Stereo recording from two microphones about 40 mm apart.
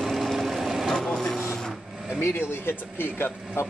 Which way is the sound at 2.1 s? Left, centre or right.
Left.